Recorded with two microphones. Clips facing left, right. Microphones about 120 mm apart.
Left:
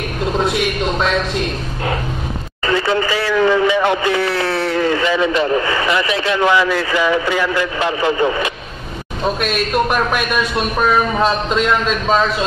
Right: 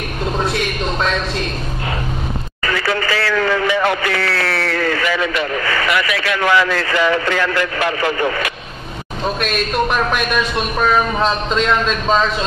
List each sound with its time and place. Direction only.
0.4 s speech: 15° left (ahead or behind)
2.6 s speech: 20° left (ahead or behind)
9.4 s speech: 5° left (ahead or behind)